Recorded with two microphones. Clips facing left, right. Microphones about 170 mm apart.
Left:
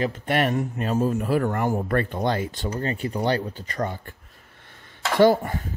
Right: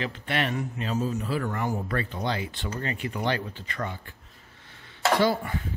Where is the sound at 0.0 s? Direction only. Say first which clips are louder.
Left 6 dB; 45° left (ahead or behind).